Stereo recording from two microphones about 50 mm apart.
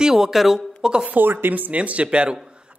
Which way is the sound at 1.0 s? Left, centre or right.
Right.